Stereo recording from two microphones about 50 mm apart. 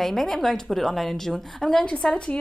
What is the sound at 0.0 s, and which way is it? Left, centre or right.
A woman's voice, centre.